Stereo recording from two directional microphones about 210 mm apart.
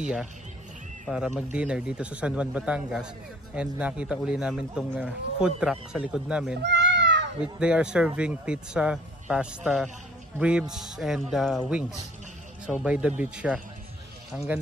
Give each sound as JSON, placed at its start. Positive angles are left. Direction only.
{"t": 0.0, "sound": "speech", "side_deg": 0}
{"t": 6.6, "sound": "cat", "side_deg": -55}
{"t": 7.5, "sound": "speech", "side_deg": -5}